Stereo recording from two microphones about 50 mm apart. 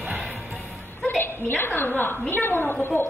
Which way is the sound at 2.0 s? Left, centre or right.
Left.